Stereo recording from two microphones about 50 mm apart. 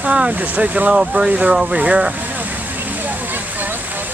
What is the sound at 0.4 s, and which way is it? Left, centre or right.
Speech, right.